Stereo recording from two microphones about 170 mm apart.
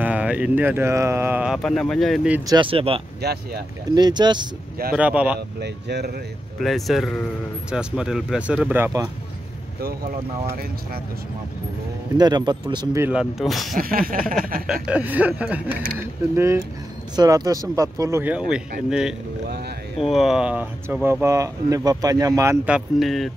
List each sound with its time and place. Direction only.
0.0 s speech: 5° right (ahead or behind)
2.4 s speech: 25° right (ahead or behind)
3.2 s speech: 70° right (ahead or behind)
3.9 s speech: 25° right (ahead or behind)
4.9 s speech: 5° right (ahead or behind)
5.6 s speech: 80° right
6.6 s speech: centre (ahead or behind); by 9.1 s 15° right (ahead or behind)
12.2 s speech: 25° right (ahead or behind)
13.0 s speech: 5° right (ahead or behind)
13.7 s a sound: 55° right (ahead or behind)
14.7 s speech: 5° right (ahead or behind)
22.7 s speech: 5° right (ahead or behind)